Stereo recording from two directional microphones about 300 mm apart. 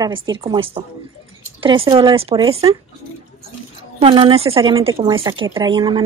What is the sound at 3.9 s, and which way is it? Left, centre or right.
A woman's voice, centre.